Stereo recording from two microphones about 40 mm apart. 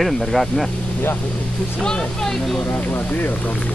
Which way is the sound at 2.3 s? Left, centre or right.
Centre.